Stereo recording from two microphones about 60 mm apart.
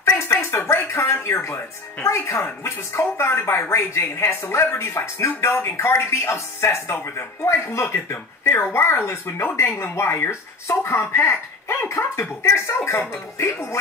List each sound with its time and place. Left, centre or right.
0.2 s speech: left
2.3 s speech: left